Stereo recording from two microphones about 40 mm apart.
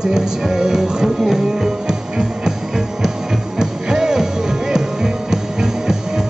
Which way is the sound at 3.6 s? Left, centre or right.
Centre.